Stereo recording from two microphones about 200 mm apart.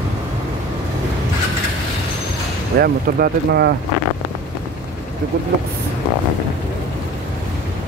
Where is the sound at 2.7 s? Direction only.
50° right (ahead or behind).